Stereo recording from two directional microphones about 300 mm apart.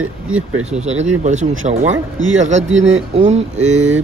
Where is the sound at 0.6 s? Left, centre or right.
Right.